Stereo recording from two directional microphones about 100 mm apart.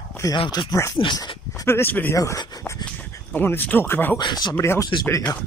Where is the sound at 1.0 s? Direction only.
50° left (ahead or behind).